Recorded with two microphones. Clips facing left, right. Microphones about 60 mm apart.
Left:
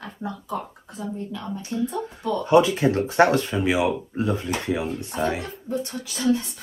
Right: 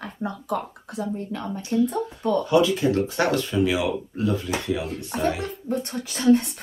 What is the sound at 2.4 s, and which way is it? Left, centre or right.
Speech, left.